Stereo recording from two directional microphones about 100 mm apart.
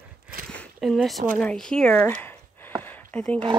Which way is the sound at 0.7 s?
Centre (ahead or behind).